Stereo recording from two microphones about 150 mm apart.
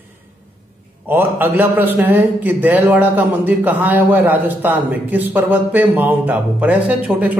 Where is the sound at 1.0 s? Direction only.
15° right (ahead or behind).